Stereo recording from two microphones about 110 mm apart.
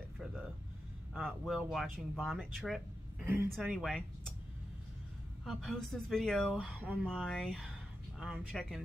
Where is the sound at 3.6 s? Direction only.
5° right (ahead or behind).